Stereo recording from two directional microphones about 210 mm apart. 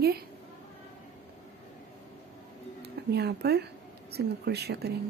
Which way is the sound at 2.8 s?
50° right (ahead or behind).